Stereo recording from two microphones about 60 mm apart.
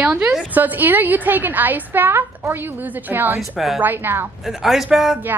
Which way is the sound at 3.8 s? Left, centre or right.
Right.